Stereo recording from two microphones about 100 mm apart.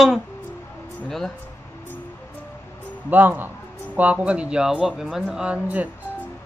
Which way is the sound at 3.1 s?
20° right (ahead or behind).